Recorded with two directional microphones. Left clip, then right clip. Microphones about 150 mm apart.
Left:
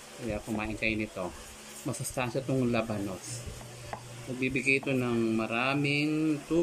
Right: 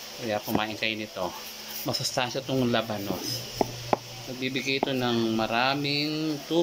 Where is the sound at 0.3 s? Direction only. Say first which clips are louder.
Right 7 dB; 25° left (ahead or behind).